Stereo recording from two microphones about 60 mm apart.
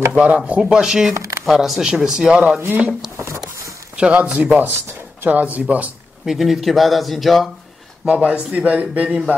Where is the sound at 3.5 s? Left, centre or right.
Right.